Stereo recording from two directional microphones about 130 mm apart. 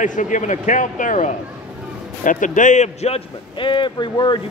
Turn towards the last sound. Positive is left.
turn(degrees=35)  # may be behind; listen again after turning